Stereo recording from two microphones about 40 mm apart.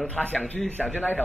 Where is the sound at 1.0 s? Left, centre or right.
Left.